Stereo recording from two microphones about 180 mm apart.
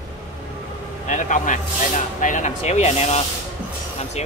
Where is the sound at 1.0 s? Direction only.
45° left (ahead or behind).